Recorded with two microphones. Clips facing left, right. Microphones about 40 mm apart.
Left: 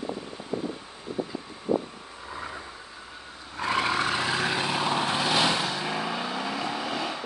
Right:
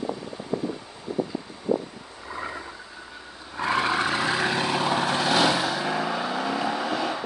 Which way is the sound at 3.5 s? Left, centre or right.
Centre.